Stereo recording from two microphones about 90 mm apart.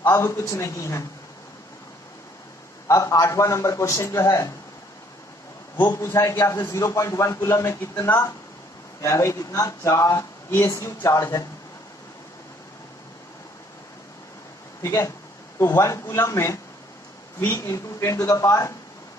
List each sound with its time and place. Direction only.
0.0 s a man's voice: 35° left (ahead or behind)
2.9 s a man's voice: 35° left (ahead or behind)
5.9 s a man's voice: 30° left (ahead or behind)
14.8 s a man's voice: 35° left (ahead or behind)